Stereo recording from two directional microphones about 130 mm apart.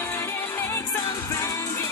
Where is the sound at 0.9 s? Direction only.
25° left (ahead or behind).